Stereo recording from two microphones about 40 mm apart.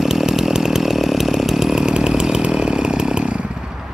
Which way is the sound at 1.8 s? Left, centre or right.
Right.